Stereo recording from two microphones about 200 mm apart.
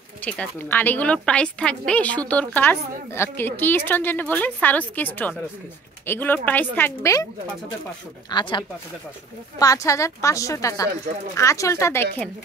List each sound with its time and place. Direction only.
0.2 s a woman's voice: 10° left (ahead or behind)
8.3 s a woman's voice: 25° left (ahead or behind)